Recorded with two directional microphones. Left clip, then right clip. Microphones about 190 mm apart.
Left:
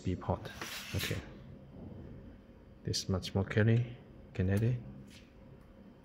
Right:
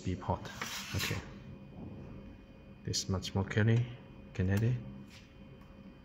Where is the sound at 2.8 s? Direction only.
10° left (ahead or behind).